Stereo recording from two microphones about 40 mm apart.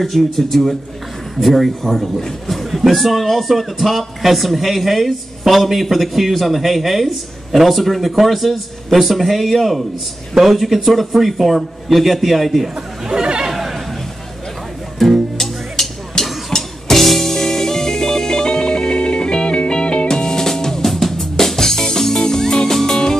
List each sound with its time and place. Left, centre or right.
0.0 s a man's voice: centre
13.1 s chatter: centre
15.0 s music: centre